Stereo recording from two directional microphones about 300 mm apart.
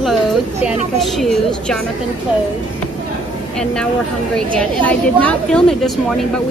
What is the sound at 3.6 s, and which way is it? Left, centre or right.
Speech, centre.